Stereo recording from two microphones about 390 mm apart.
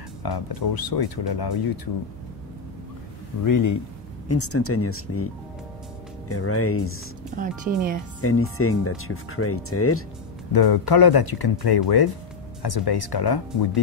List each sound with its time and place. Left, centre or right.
0.2 s speech: left
3.4 s speech: left
4.3 s speech: left
7.3 s speech: right
8.2 s speech: left
10.5 s speech: left